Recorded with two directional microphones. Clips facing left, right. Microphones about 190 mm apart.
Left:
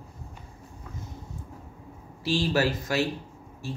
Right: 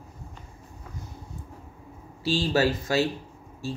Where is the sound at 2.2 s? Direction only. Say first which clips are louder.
Right 1 dB; 25° right (ahead or behind).